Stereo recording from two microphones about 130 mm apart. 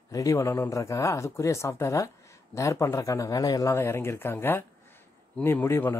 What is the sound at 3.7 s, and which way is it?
Speech, 20° left (ahead or behind).